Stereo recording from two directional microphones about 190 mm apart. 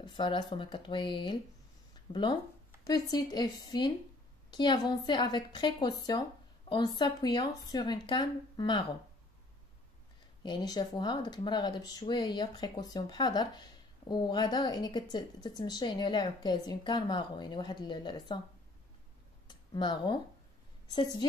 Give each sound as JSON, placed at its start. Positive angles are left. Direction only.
{"t": 0.0, "sound": "speech", "side_deg": 25}
{"t": 2.0, "sound": "a sound", "side_deg": 25}
{"t": 2.8, "sound": "speech", "side_deg": 20}
{"t": 10.4, "sound": "speech", "side_deg": 20}
{"t": 19.7, "sound": "speech", "side_deg": 25}